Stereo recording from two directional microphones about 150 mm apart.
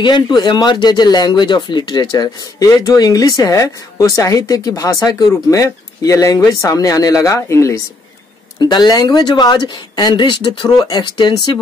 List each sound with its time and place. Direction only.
0.0 s speech: 30° left (ahead or behind)